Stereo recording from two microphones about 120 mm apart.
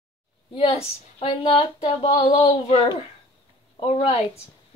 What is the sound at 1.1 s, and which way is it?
Speech, 50° left (ahead or behind).